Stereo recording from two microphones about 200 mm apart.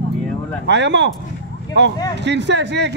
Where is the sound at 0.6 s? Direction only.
60° right (ahead or behind).